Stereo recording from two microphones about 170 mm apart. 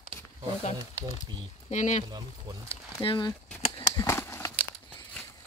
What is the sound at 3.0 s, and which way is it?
Speech, 30° left (ahead or behind).